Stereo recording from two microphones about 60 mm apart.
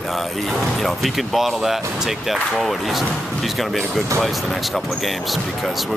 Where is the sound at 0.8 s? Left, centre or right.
Centre.